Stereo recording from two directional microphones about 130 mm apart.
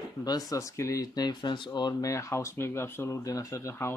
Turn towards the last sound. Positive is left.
turn(degrees=20)  # may be behind; listen again after turning